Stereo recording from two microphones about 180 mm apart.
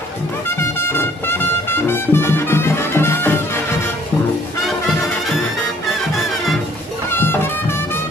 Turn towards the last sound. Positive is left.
turn(degrees=15)  # may be behind; listen again after turning